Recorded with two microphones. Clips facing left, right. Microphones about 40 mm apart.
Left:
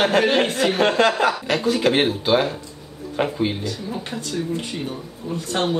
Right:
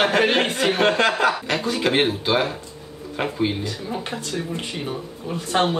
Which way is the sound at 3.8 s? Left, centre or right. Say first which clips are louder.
Even; centre.